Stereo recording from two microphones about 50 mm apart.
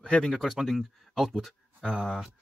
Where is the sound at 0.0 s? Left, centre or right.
Centre.